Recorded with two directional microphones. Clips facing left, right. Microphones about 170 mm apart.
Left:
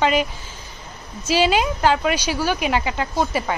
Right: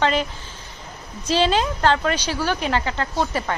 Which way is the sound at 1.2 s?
10° left (ahead or behind).